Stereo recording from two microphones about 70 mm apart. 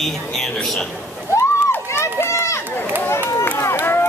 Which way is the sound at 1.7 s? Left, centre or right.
Left.